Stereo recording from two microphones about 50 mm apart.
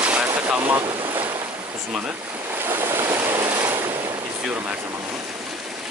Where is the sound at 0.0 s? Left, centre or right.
Right.